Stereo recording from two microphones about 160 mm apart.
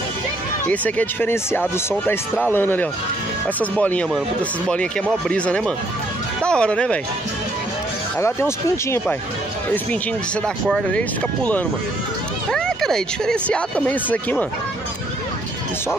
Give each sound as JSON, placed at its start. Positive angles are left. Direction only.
{"t": 0.7, "sound": "speech", "side_deg": 10}
{"t": 5.3, "sound": "speech", "side_deg": 5}
{"t": 8.2, "sound": "speech", "side_deg": 15}
{"t": 10.4, "sound": "speech", "side_deg": 5}